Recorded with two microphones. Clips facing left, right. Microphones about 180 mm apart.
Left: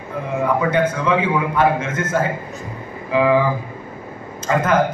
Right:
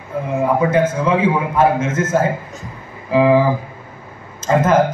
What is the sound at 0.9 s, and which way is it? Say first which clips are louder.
Speech: right 2 dB; 35° right (ahead or behind).